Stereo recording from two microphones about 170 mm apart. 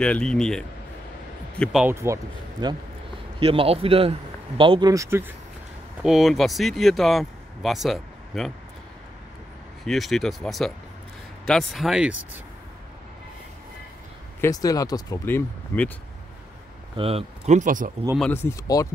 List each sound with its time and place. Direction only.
0.0 s speech: 5° left (ahead or behind)
1.9 s speech: 15° right (ahead or behind)
2.6 s a man's voice: 25° right (ahead or behind)
6.0 s speech: centre (ahead or behind)
9.8 s speech: centre (ahead or behind)
14.4 s speech: 20° left (ahead or behind)
16.9 s speech: 35° right (ahead or behind); by 17.9 s 50° right (ahead or behind)
18.3 s speech: 15° left (ahead or behind)